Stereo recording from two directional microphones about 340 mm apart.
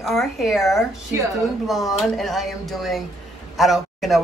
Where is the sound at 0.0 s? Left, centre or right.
Centre.